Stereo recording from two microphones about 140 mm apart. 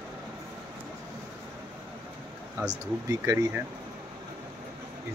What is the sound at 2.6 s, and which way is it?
Speech, 25° right (ahead or behind).